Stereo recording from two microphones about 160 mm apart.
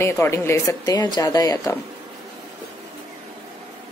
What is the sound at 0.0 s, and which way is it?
A woman's voice, 15° left (ahead or behind).